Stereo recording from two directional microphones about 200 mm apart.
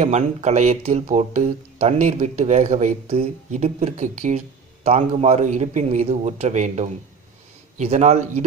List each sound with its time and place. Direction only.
0.0 s speech: 35° right (ahead or behind)